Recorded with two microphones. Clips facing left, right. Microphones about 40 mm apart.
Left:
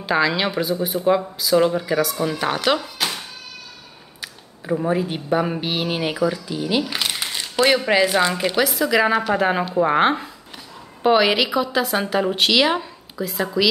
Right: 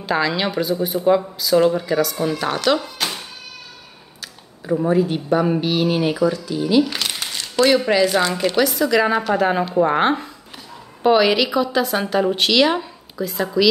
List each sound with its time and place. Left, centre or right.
0.0 s a woman's voice: centre
4.2 s a sound: centre
4.9 s speech: centre
6.8 s a woman's voice: centre